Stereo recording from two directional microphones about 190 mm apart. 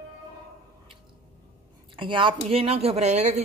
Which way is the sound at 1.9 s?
25° right (ahead or behind).